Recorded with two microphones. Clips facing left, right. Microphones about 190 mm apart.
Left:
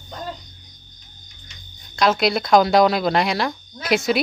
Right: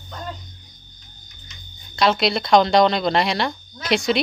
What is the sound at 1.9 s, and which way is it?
Speech, centre (ahead or behind).